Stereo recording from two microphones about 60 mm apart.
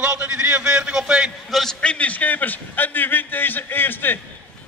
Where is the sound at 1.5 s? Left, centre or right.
Centre.